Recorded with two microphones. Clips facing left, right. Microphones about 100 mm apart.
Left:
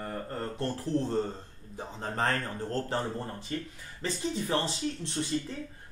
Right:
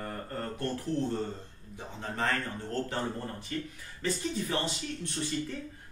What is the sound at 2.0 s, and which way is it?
Speech, 40° left (ahead or behind).